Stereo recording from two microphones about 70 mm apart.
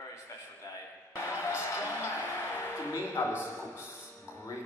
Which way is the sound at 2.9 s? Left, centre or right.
Left.